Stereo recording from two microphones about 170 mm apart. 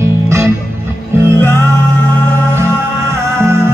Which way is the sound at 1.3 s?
15° left (ahead or behind).